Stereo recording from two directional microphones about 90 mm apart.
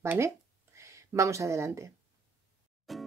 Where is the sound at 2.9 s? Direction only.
Centre (ahead or behind).